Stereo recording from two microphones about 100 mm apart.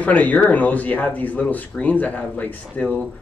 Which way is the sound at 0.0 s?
15° left (ahead or behind).